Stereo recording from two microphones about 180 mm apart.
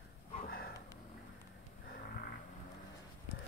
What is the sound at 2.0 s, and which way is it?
Vehicle, 60° left (ahead or behind).